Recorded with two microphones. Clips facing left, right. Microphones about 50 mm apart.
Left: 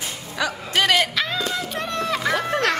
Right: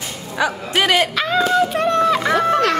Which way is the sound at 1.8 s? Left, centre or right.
Right.